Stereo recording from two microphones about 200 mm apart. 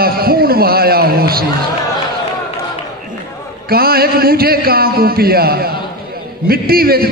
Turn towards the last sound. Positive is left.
turn(degrees=-50)  # may be behind; listen again after turning